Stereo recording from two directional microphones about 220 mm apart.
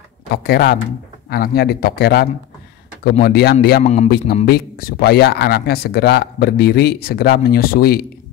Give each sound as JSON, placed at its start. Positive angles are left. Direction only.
{"t": 0.3, "sound": "speech", "side_deg": 45}
{"t": 3.8, "sound": "a man's voice", "side_deg": 30}
{"t": 4.5, "sound": "speech", "side_deg": 45}